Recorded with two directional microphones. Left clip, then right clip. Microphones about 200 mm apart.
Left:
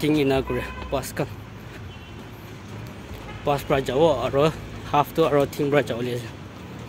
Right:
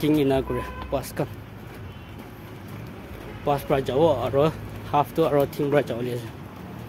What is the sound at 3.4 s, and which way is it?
Speech, centre (ahead or behind).